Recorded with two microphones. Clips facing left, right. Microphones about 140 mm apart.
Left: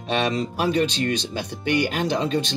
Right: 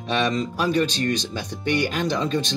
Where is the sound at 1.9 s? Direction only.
55° left (ahead or behind).